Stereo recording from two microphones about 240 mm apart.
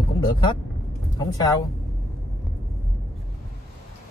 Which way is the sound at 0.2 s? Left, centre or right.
Centre.